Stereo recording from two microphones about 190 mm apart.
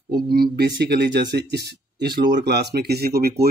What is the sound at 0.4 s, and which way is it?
Speech, 60° right (ahead or behind).